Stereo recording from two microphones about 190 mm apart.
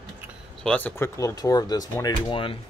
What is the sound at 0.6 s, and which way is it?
Speech, 10° left (ahead or behind).